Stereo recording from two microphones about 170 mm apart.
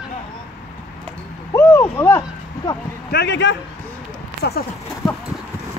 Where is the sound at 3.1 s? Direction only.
80° left.